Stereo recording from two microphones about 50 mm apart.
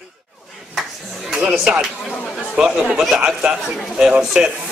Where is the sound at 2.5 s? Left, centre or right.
Centre.